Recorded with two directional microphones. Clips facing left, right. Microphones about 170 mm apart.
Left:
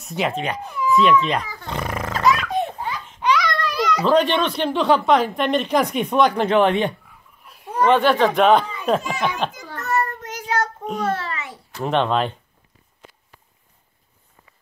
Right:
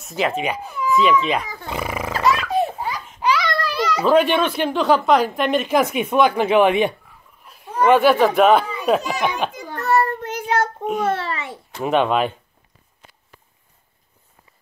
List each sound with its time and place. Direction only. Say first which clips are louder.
0.0 s speech: right 2 dB; centre (ahead or behind)
1.5 s baby laughter: right 1 dB; 10° right (ahead or behind)
3.0 s a child's voice: left 1 dB; 5° right (ahead or behind)
9.8 s child singing: right 5 dB; 35° right (ahead or behind)
11.1 s a sound: right 2 dB; 30° right (ahead or behind)
11.8 s speech: right 2 dB; 10° right (ahead or behind)